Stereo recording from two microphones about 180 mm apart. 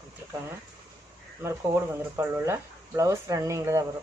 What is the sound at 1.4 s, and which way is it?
Speech, 15° right (ahead or behind).